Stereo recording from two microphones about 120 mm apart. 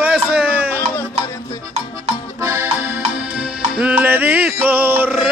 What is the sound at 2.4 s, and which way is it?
Music, 20° right (ahead or behind).